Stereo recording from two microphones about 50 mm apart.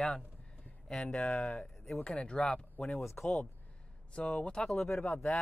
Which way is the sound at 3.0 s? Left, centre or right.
Left.